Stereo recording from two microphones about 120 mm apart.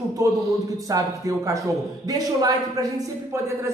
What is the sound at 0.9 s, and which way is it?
Speech, 30° right (ahead or behind).